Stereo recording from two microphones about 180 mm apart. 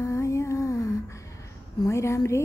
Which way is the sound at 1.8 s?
15° left (ahead or behind).